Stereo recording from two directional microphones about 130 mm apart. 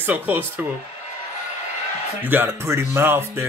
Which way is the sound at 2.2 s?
15° right (ahead or behind).